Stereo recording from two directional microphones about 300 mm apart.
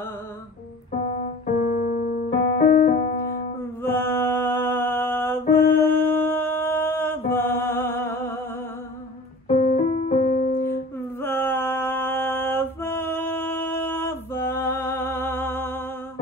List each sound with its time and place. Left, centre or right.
1.4 s keyboard: left
3.8 s mantra: centre
5.5 s music: centre
9.5 s music: left
11.1 s a sound: centre